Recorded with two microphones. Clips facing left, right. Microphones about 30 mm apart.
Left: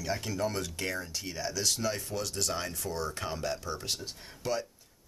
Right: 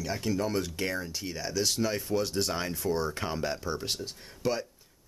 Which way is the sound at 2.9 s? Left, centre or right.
Right.